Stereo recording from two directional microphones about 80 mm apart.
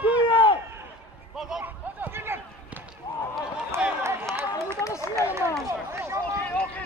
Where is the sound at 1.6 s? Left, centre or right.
Right.